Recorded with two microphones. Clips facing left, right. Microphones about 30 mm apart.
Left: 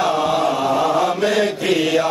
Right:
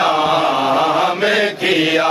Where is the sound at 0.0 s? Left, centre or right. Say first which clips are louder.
Right 3 dB; right.